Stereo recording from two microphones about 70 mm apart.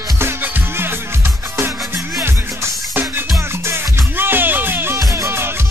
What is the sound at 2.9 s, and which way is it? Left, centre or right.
Music, right.